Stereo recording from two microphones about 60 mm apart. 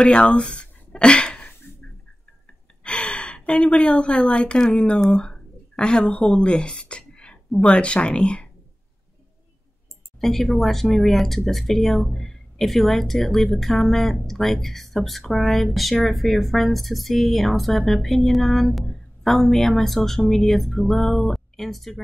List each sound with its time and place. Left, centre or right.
0.0 s a sound: centre
2.8 s a woman's voice: centre
10.2 s speech: centre